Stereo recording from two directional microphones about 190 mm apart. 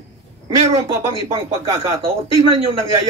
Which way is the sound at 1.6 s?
25° right (ahead or behind).